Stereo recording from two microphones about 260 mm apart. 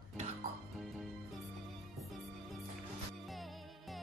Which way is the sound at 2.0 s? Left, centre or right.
Centre.